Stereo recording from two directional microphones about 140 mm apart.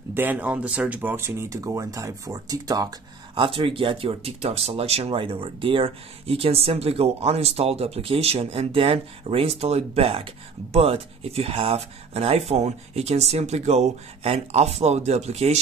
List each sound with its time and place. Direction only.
0.1 s speech: 15° right (ahead or behind)
3.3 s speech: 40° right (ahead or behind)